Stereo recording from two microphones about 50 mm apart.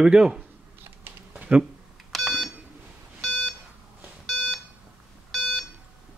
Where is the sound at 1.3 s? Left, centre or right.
Right.